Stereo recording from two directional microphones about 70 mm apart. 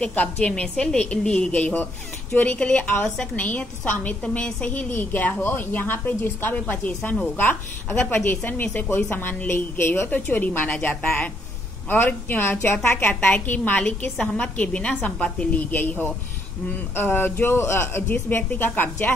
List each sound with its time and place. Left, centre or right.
0.0 s a woman's voice: left
0.4 s a woman's voice: centre
8.6 s a woman's voice: centre
8.9 s a woman's voice: left
10.0 s a woman's voice: left
13.0 s a woman's voice: left
15.7 s a woman's voice: left